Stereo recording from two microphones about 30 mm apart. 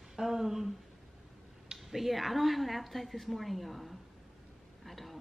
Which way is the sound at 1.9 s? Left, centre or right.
Centre.